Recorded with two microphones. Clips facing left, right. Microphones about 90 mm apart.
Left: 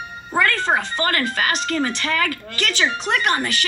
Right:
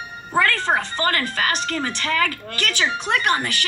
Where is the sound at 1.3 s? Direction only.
35° right (ahead or behind).